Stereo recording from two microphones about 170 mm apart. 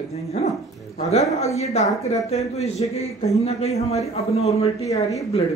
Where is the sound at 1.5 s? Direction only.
40° left (ahead or behind).